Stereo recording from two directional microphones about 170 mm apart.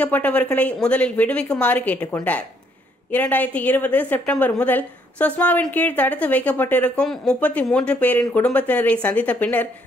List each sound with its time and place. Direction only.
0.0 s a woman's voice: 10° left (ahead or behind)